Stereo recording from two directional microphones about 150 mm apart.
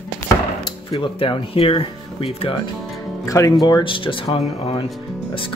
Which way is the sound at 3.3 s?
25° left (ahead or behind).